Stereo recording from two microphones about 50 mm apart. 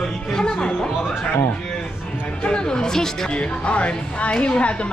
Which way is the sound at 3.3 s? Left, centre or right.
Left.